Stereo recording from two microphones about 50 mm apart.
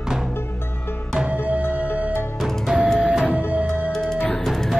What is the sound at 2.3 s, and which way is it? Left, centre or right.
Music, centre.